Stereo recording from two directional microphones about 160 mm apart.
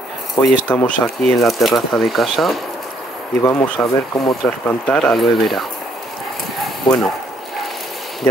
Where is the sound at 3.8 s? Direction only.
10° left (ahead or behind).